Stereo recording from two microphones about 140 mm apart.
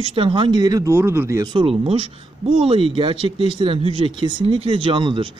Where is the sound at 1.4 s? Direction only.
35° right (ahead or behind).